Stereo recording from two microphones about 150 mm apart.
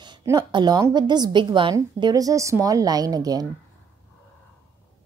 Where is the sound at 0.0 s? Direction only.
25° right (ahead or behind).